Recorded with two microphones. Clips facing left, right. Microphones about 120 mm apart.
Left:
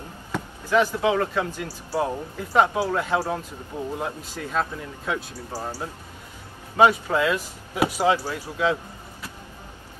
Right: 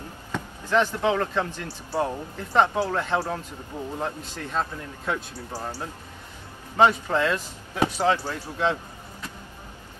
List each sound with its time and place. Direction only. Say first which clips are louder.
0.3 s speech: left 2 dB; 10° left (ahead or behind)